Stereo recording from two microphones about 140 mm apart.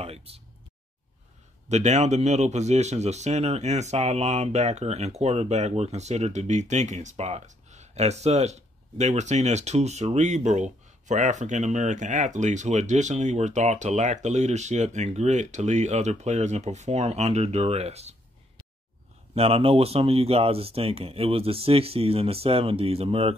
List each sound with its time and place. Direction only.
0.0 s speech: 45° right (ahead or behind)
1.7 s speech: 55° right (ahead or behind)
19.3 s speech: 45° right (ahead or behind)